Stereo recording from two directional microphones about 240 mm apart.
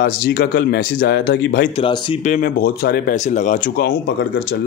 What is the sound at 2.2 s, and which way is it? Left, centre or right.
Speech, left.